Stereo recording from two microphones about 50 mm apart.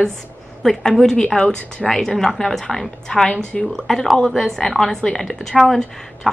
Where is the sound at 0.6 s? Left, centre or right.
Centre.